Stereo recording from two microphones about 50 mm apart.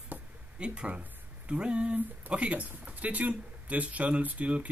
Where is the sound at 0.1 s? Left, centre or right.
Right.